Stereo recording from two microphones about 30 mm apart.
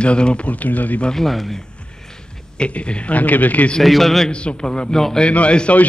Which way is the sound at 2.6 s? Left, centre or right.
Left.